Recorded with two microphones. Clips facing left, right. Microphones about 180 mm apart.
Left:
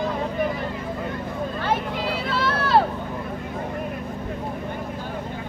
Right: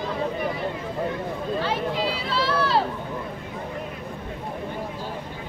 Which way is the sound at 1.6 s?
50° left (ahead or behind).